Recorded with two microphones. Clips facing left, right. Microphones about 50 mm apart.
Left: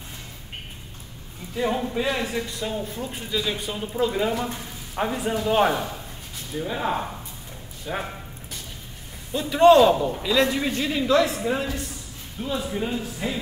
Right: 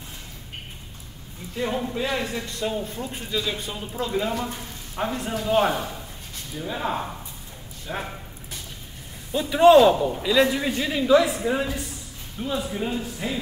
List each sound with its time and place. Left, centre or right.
1.5 s a man's voice: centre
9.3 s a man's voice: centre